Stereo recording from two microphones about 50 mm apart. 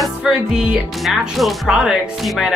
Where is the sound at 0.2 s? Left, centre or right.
Centre.